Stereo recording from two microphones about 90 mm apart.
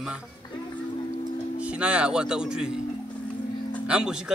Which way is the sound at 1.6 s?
15° right (ahead or behind).